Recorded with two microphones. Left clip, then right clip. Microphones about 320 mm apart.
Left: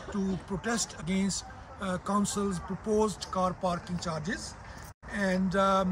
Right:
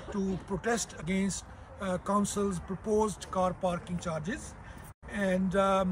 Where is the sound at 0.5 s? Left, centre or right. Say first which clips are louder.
Right 2 dB; centre.